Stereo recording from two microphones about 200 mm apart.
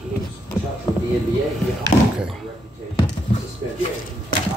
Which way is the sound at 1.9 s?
35° left (ahead or behind).